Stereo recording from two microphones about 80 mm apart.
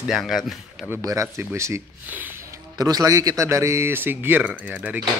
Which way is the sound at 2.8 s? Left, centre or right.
Right.